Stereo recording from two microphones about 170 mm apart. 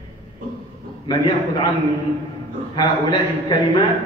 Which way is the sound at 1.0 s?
25° left (ahead or behind).